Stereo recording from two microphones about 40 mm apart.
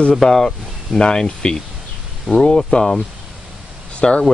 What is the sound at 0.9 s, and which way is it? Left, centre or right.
Speech, left.